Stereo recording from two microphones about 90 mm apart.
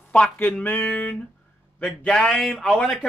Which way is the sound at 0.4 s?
20° left (ahead or behind).